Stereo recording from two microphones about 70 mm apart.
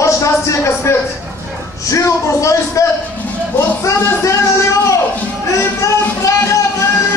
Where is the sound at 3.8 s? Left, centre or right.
Left.